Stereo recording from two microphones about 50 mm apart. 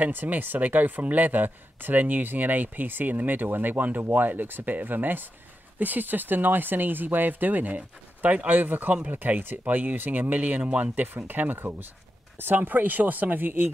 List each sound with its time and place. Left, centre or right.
0.0 s speech: right
10.6 s speech: centre
11.0 s speech: right